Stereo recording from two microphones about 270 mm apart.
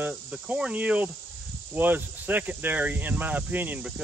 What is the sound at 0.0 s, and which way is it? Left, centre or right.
Speech, centre.